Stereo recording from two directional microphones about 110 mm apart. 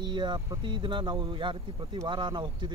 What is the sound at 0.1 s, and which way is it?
Speech, 45° right (ahead or behind).